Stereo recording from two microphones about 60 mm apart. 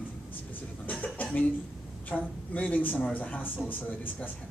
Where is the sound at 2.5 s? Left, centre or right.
Left.